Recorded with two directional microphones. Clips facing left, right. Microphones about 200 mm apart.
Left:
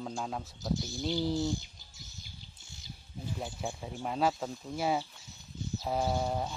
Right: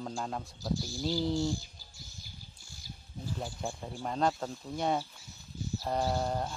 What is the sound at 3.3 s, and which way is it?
Speech, 5° left (ahead or behind).